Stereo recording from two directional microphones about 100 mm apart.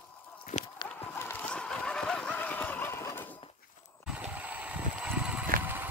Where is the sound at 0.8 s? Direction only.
20° left (ahead or behind).